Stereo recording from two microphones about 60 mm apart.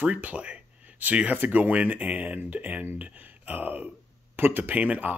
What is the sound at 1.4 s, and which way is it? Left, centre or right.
Speech, right.